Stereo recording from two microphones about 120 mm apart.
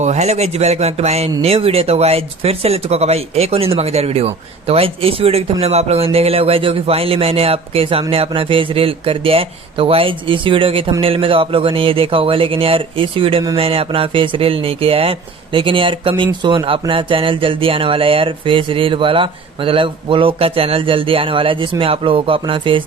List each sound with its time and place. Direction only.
0.0 s speech: 70° right (ahead or behind); by 22.8 s 45° right (ahead or behind)